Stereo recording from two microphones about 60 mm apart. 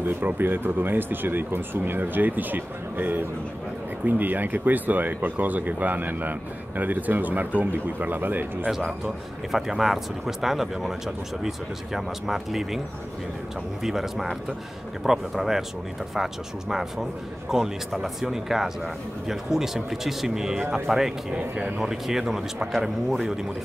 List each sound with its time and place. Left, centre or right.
0.0 s speech: right
8.6 s speech: centre
13.8 s speech: centre
21.4 s speech: right
21.7 s a man's voice: centre